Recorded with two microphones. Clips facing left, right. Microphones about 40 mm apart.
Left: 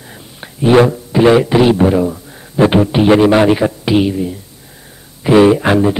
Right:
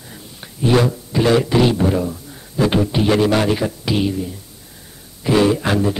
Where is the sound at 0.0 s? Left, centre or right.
Left.